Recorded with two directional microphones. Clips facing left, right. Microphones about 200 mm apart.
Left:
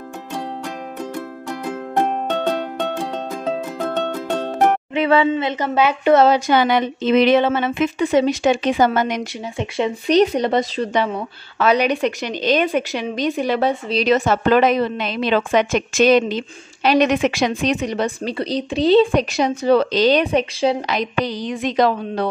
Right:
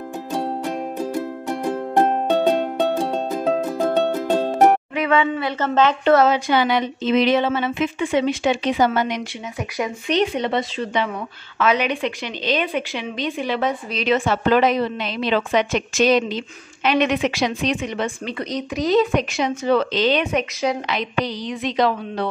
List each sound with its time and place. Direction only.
0.9 s music: 30° right (ahead or behind)
2.2 s music: 15° right (ahead or behind)
4.1 s music: 15° right (ahead or behind)
4.9 s a sound: 30° left (ahead or behind)
5.3 s speech: 20° left (ahead or behind)
5.8 s a woman's voice: 10° left (ahead or behind)
6.1 s a woman's voice: 35° left (ahead or behind)
9.6 s speech: 25° left (ahead or behind)
10.1 s a woman's voice: 40° left (ahead or behind); by 16.4 s 55° left (ahead or behind)
16.8 s a woman's voice: 40° left (ahead or behind)